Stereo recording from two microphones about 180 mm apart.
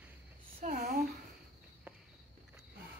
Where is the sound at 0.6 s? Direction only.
50° right (ahead or behind).